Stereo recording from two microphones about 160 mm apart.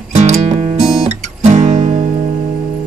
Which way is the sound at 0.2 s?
45° right (ahead or behind).